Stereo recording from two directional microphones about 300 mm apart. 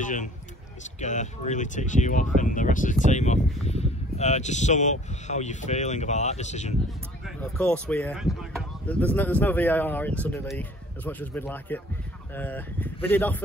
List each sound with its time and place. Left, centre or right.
0.0 s speech: left
7.2 s speech: centre